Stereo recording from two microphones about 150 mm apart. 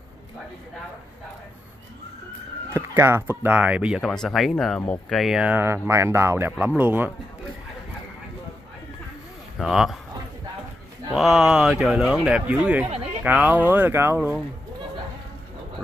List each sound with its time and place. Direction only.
2.7 s speech: 15° right (ahead or behind)
9.6 s speech: centre (ahead or behind)
11.1 s speech: 5° right (ahead or behind)